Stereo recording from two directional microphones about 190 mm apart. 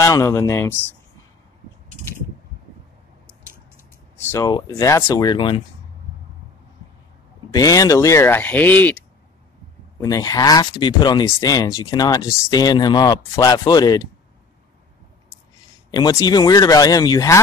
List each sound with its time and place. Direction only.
0.0 s speech: 15° left (ahead or behind)
4.3 s speech: 20° left (ahead or behind)
7.5 s speech: 20° left (ahead or behind)
15.9 s speech: 20° left (ahead or behind)